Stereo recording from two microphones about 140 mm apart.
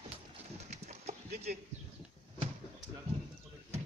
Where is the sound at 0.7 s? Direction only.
50° right (ahead or behind).